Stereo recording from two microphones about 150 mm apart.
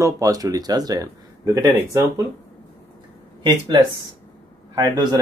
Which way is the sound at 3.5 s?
30° right (ahead or behind).